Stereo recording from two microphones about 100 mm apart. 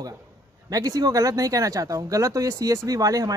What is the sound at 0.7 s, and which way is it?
Speech, 35° right (ahead or behind).